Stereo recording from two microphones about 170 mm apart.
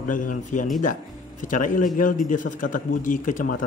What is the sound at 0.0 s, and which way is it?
Speech, 50° left (ahead or behind).